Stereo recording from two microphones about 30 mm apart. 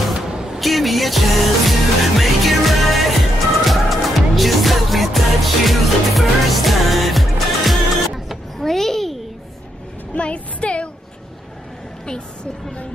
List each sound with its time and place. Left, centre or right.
0.6 s music: centre
8.5 s a sound: centre
10.1 s music: left